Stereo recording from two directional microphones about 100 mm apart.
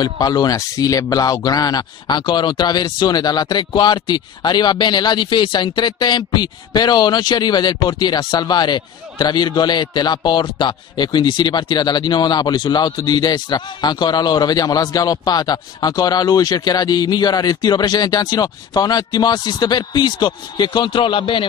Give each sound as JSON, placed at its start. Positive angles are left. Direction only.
{"t": 0.0, "sound": "a man's voice", "side_deg": 40}